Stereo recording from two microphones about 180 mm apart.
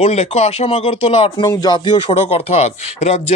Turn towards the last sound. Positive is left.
turn(degrees=35)  # may be behind; listen again after turning